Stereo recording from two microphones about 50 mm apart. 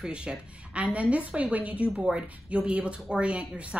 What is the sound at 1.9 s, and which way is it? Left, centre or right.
A woman's voice, centre.